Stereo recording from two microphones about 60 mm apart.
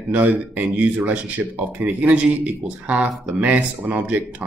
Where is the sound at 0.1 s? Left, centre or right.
Right.